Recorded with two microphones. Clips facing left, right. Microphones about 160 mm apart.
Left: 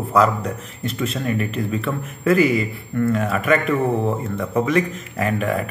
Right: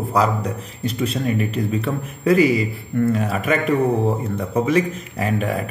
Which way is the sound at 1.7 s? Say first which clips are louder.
Right 1 dB; 35° right (ahead or behind).